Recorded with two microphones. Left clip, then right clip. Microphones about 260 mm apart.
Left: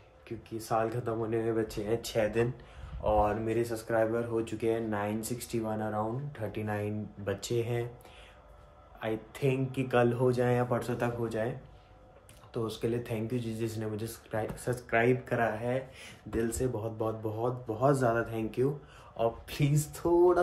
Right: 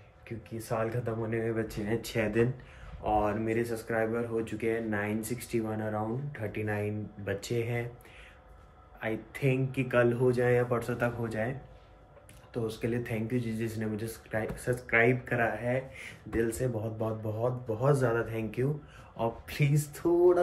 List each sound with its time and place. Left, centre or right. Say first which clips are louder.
0.7 s speech: left 2 dB; centre
9.0 s speech: even; centre
12.8 s speech: even; centre